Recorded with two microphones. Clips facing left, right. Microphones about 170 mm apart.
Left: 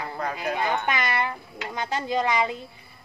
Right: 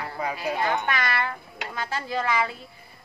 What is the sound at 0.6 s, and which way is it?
Speech, 20° left (ahead or behind).